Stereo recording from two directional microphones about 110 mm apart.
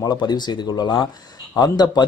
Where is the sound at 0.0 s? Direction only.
40° left (ahead or behind).